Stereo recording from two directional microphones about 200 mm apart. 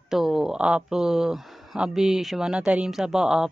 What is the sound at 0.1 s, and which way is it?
Speech, centre (ahead or behind).